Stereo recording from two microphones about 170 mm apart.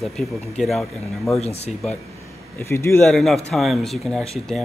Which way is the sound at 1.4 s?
40° left (ahead or behind).